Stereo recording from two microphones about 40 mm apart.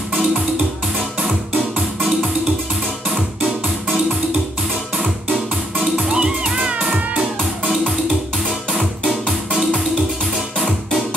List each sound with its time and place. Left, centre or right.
1.2 s music: right
5.9 s music: right
8.7 s music: centre